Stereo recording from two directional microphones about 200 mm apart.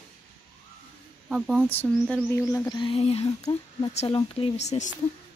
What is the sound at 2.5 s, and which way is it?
Music, 20° left (ahead or behind).